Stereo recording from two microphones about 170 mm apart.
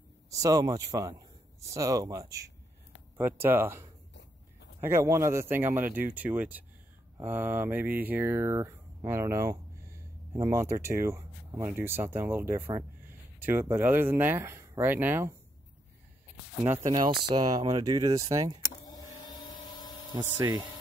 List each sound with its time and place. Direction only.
0.3 s speech: 20° right (ahead or behind)
16.6 s speech: 10° right (ahead or behind)
16.9 s speech: 30° right (ahead or behind)
18.9 s vehicle: 25° left (ahead or behind)
20.2 s speech: 20° right (ahead or behind)